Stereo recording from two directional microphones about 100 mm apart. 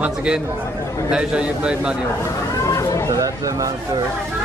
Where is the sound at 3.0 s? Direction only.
35° right (ahead or behind).